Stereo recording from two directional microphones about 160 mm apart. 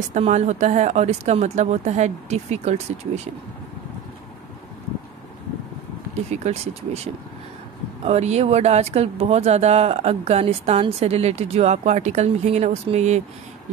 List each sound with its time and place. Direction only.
0.1 s speech: 45° right (ahead or behind)
6.3 s speech: 45° right (ahead or behind)